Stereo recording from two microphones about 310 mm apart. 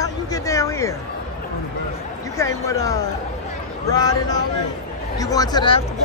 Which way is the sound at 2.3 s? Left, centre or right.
Centre.